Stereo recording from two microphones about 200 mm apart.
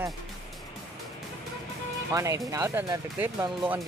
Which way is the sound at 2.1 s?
15° right (ahead or behind).